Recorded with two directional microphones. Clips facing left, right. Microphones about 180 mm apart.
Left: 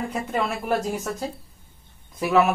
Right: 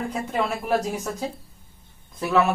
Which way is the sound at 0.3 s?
Centre (ahead or behind).